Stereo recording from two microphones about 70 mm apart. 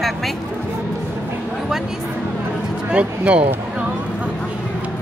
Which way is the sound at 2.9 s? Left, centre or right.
Centre.